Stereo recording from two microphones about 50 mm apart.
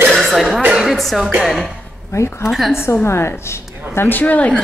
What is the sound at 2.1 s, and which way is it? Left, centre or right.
Speech, left.